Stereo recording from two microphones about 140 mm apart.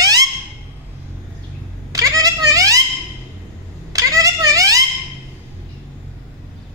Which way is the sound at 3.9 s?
25° right (ahead or behind).